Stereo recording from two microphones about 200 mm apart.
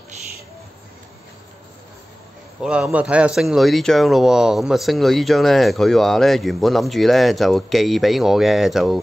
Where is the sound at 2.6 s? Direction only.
5° right (ahead or behind).